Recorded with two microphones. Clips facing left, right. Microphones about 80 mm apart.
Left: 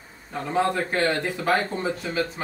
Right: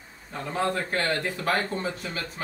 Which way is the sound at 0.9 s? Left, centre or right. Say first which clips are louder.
Left 3 dB; left.